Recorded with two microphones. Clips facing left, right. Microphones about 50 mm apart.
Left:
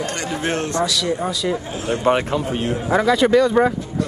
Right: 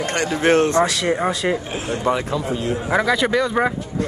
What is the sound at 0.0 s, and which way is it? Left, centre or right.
A man's voice, right.